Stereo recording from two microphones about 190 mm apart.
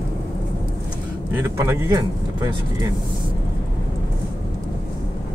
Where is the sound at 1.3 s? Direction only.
15° right (ahead or behind).